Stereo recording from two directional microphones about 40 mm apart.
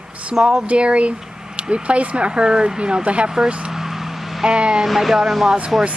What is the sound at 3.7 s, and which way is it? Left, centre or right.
Vehicle, centre.